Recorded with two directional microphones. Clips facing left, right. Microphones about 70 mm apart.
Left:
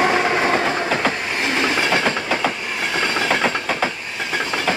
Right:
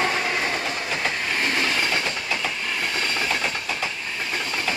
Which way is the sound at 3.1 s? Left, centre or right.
Left.